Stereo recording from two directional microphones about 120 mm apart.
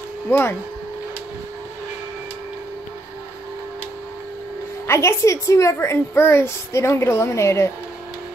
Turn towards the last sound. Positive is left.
turn(degrees=25)  # may be behind; listen again after turning